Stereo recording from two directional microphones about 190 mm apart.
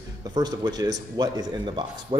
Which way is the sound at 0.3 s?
20° right (ahead or behind).